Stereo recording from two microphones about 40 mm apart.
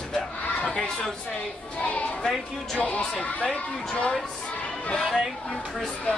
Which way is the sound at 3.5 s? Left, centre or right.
Left.